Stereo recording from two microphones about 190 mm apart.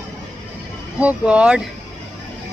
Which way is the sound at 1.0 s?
5° right (ahead or behind).